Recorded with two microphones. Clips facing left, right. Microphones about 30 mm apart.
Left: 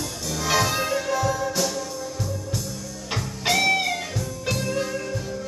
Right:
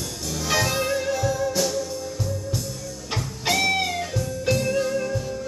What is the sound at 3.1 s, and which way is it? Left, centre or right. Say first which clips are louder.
Music: left 1 dB; centre.